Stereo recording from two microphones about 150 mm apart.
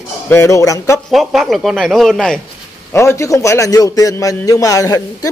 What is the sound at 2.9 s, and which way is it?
A man's voice, 20° left (ahead or behind).